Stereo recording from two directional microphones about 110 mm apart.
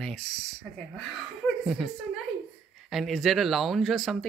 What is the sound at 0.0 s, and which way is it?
Speech, 5° left (ahead or behind).